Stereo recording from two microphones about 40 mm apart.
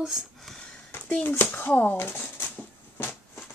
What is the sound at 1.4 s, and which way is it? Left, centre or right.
Speech, left.